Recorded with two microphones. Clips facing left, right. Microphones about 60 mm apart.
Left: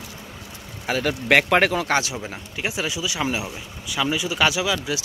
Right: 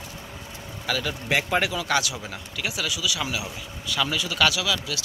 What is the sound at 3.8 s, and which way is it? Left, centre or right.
Speech, centre.